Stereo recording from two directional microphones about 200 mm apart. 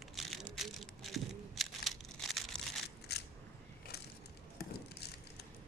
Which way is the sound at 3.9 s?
55° left (ahead or behind).